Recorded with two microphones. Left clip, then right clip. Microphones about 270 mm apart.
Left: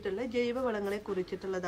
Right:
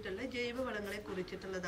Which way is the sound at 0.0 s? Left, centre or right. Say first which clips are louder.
Left 7 dB; centre.